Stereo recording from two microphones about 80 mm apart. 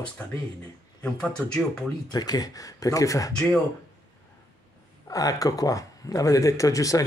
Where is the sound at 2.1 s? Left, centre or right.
Left.